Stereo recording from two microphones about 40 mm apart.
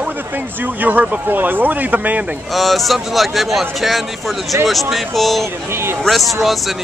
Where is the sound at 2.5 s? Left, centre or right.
Centre.